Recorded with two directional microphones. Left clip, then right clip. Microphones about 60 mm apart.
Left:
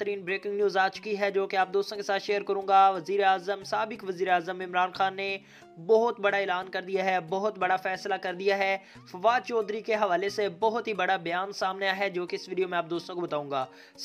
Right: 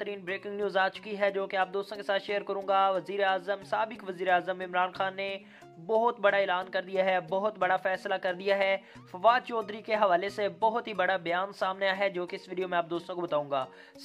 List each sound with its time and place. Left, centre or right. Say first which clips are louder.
0.0 s speech: left 4 dB; left
6.3 s speech: right 1 dB; left
7.6 s speech: even; left
9.2 s speech: even; left